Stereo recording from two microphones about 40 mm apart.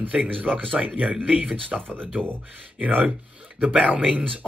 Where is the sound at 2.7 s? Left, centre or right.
Right.